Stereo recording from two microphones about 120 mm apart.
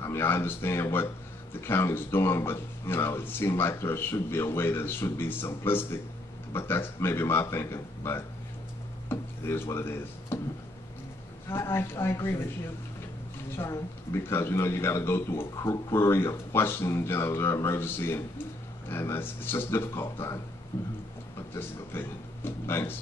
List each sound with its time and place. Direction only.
0.0 s speech: 20° left (ahead or behind)
11.4 s speech: 20° left (ahead or behind)
13.6 s speech: 20° left (ahead or behind)